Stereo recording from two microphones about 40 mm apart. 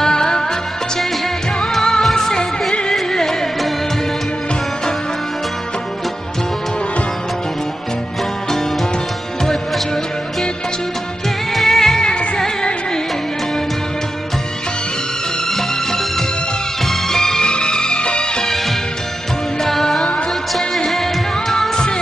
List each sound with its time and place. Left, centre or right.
0.0 s music: centre
1.6 s music: centre
11.5 s music: centre
15.5 s music: centre
19.6 s music: centre